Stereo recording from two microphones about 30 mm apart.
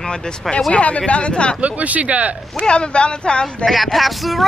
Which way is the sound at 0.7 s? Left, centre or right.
Left.